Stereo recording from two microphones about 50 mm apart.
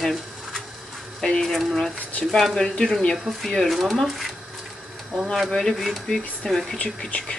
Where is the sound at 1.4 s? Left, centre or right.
Centre.